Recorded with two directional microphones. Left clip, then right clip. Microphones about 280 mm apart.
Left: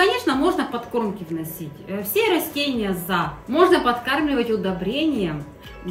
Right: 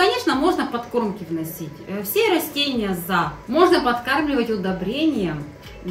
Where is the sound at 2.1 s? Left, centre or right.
Centre.